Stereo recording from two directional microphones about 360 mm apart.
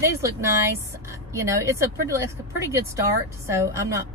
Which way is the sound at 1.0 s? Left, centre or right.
Centre.